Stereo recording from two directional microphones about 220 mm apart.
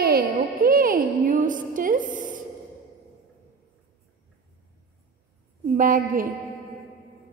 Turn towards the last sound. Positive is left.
turn(degrees=-40)  # may be behind; listen again after turning